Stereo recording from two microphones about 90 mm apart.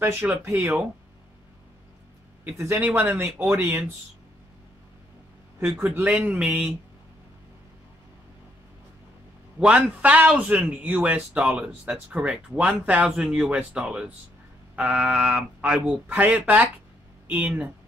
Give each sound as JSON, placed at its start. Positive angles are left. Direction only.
{"t": 0.0, "sound": "speech", "side_deg": -25}
{"t": 2.4, "sound": "speech", "side_deg": -30}
{"t": 5.9, "sound": "a man's voice", "side_deg": -15}
{"t": 9.6, "sound": "a man's voice", "side_deg": -10}